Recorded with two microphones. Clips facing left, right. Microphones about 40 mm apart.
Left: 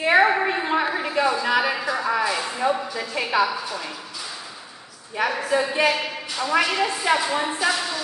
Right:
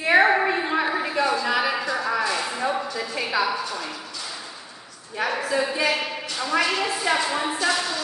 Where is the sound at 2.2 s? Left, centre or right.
Centre.